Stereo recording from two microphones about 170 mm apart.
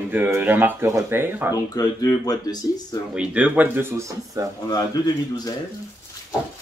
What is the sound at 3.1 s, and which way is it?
Speech, 5° right (ahead or behind).